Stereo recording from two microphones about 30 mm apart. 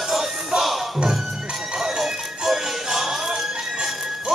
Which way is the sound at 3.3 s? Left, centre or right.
Right.